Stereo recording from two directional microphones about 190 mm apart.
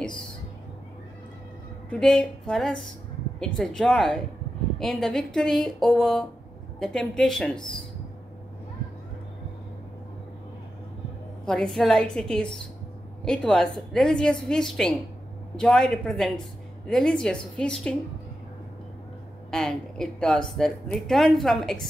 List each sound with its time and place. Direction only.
1.9 s a woman's voice: 5° left (ahead or behind)
11.4 s a woman's voice: 5° left (ahead or behind)
19.5 s a woman's voice: 5° left (ahead or behind)